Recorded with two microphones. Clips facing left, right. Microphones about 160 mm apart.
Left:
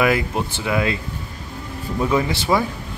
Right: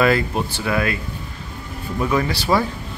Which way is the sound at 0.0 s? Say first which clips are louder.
Right 1 dB; 15° left (ahead or behind).